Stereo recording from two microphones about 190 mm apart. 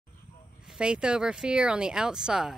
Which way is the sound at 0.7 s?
5° right (ahead or behind).